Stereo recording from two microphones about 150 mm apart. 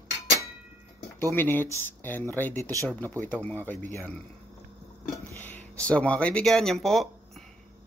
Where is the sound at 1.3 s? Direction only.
15° left (ahead or behind).